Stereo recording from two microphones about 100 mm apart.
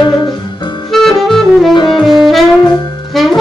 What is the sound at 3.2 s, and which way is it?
Music, centre (ahead or behind).